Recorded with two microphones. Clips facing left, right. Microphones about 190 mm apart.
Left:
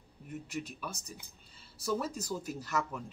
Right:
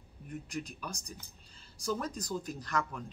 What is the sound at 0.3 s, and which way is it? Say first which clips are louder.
Speech: even; 5° left (ahead or behind).